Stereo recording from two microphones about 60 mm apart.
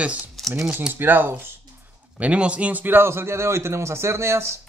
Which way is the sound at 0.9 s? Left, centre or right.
Right.